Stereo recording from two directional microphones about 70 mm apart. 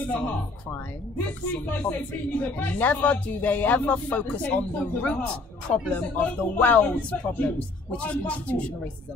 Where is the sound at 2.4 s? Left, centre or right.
Left.